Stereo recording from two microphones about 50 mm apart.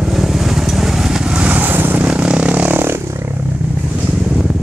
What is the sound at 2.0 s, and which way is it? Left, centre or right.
Vehicle, right.